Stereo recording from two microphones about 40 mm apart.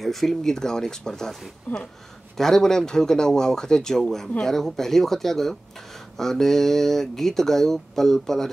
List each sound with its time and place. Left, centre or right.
0.0 s speech: centre
0.4 s speech: centre
1.7 s speech: left
2.3 s speech: centre